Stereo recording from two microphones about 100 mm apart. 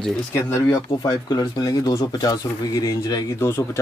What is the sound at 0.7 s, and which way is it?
Speech, 50° left (ahead or behind).